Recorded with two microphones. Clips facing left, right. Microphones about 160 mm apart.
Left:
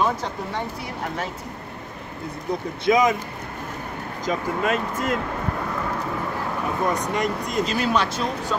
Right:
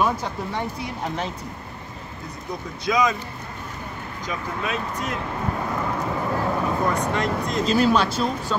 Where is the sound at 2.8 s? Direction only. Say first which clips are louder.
Left 3 dB; 25° left (ahead or behind).